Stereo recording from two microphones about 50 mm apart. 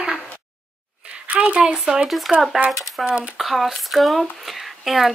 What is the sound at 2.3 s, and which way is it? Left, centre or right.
Speech, centre.